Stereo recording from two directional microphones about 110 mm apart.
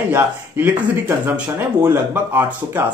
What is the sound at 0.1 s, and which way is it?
Speech, 15° right (ahead or behind).